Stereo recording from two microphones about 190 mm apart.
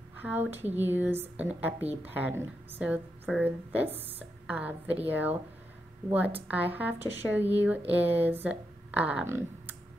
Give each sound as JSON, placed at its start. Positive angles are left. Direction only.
{"t": 0.2, "sound": "speech", "side_deg": -10}